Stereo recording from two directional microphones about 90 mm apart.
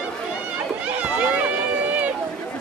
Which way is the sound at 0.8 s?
15° right (ahead or behind).